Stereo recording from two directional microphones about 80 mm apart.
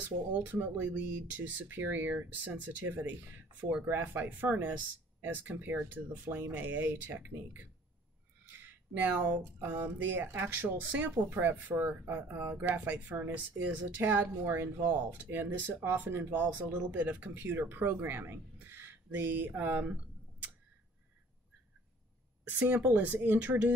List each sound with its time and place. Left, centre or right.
0.0 s speech: right
22.5 s speech: centre